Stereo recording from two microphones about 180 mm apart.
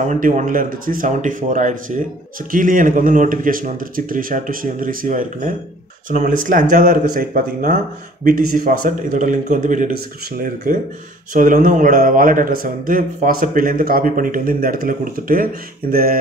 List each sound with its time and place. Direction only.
0.0 s speech: 45° right (ahead or behind)
11.3 s speech: 45° right (ahead or behind)